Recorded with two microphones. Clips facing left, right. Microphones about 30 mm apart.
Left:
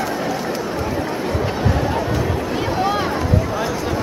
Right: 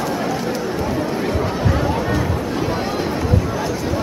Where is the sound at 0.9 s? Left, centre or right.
Centre.